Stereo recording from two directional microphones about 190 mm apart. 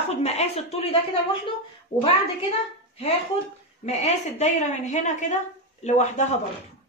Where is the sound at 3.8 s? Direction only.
35° left (ahead or behind).